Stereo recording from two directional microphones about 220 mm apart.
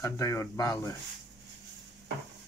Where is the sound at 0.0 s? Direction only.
15° left (ahead or behind).